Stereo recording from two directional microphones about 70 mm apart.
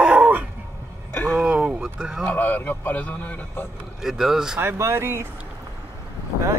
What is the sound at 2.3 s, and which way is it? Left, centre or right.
A man's voice, left.